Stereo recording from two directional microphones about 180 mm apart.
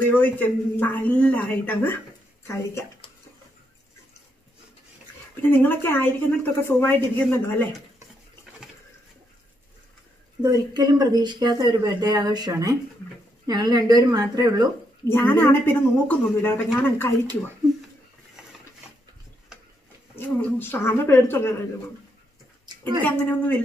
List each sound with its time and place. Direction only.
0.0 s speech: 10° left (ahead or behind)
5.4 s speech: 10° left (ahead or behind)
10.4 s speech: 20° right (ahead or behind)
15.0 s speech: 15° left (ahead or behind)
20.2 s speech: 10° left (ahead or behind)
22.7 s a sound: 25° right (ahead or behind)
23.0 s speech: 10° left (ahead or behind)